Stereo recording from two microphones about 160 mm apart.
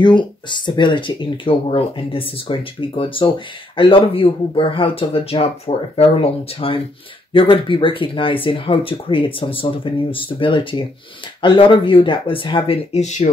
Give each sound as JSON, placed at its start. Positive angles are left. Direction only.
{"t": 0.0, "sound": "speech", "side_deg": 30}